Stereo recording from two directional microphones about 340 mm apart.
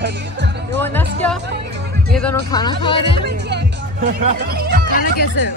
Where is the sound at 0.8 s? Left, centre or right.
Centre.